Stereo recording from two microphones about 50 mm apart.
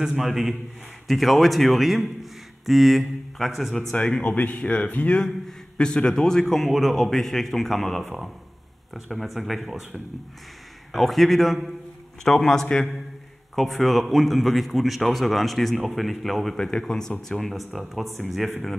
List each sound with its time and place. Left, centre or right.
0.0 s speech: centre
3.9 s a man's voice: left
6.6 s speech: centre
10.9 s a man's voice: centre